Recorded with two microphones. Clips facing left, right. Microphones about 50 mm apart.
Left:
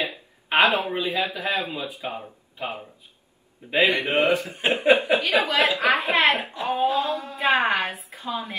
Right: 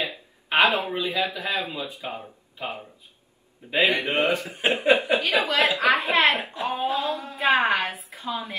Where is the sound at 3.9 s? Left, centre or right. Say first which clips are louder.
Left 2 dB; left.